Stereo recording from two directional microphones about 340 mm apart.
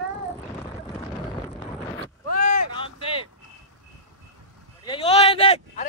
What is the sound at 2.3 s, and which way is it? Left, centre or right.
Vehicle, left.